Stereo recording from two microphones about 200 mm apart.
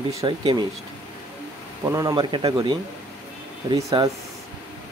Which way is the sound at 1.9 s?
15° right (ahead or behind).